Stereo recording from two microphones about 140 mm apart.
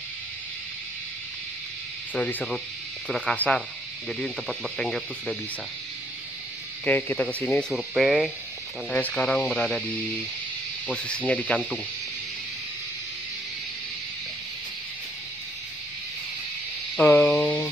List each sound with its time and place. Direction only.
2.1 s speech: 10° left (ahead or behind)
6.8 s speech: 10° left (ahead or behind)
7.7 s speech: centre (ahead or behind)
10.9 s speech: 5° left (ahead or behind)
17.0 s a sound: 15° left (ahead or behind)